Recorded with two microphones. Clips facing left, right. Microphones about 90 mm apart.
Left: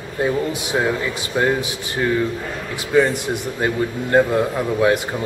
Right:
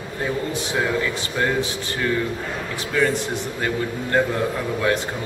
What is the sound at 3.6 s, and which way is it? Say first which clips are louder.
A man's voice: left 5 dB; 20° left (ahead or behind).